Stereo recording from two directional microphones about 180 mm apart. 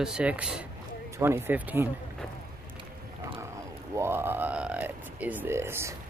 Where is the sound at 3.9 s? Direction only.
15° right (ahead or behind).